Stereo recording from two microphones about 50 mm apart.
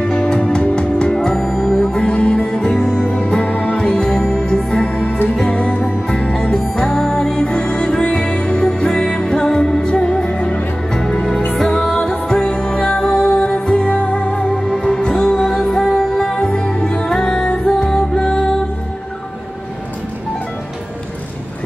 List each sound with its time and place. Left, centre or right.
0.0 s music: centre
1.4 s music: centre
1.9 s music: centre
3.2 s music: left
3.7 s music: centre
12.0 s music: centre
15.8 s music: centre
16.4 s music: centre